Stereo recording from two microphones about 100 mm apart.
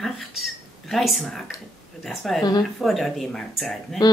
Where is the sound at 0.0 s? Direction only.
Centre (ahead or behind).